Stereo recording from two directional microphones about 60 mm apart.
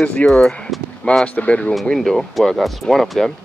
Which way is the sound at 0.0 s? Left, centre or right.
Left.